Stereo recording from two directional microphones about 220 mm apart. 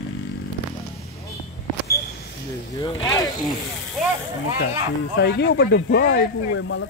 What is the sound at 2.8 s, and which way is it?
Speech, 20° left (ahead or behind).